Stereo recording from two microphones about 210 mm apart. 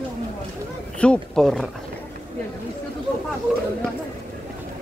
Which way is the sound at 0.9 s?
5° left (ahead or behind).